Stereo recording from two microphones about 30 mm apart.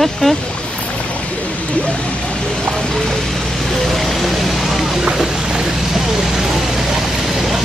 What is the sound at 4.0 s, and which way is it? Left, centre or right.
Vehicle, centre.